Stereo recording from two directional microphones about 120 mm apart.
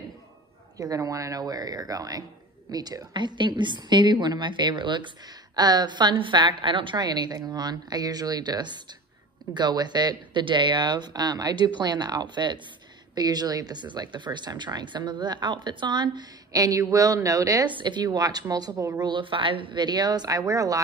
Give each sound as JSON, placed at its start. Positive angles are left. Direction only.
{"t": 0.7, "sound": "a woman's voice", "side_deg": -30}
{"t": 17.6, "sound": "a woman's voice", "side_deg": -40}
{"t": 19.0, "sound": "a woman's voice", "side_deg": -45}